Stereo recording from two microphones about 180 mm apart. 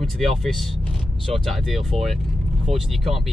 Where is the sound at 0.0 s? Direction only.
Centre (ahead or behind).